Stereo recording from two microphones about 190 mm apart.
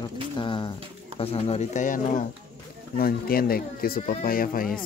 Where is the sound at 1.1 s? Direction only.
30° left (ahead or behind); by 4.7 s 50° left (ahead or behind).